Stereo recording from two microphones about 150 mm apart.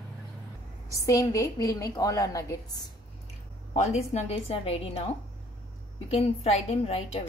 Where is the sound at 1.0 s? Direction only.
20° left (ahead or behind).